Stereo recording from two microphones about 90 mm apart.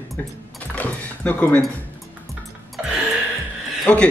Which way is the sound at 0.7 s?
15° left (ahead or behind).